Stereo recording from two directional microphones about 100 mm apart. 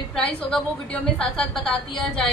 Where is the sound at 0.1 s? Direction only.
5° left (ahead or behind).